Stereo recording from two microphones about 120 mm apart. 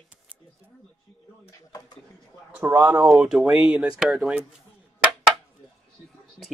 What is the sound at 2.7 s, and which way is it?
Speech, 30° right (ahead or behind).